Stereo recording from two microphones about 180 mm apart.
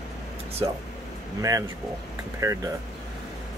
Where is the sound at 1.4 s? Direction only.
20° right (ahead or behind).